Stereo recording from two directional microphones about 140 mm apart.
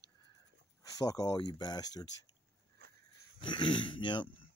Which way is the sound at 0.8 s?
25° left (ahead or behind).